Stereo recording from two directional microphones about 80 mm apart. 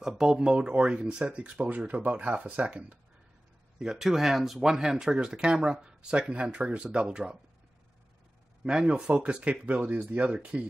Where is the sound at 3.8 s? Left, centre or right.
Centre.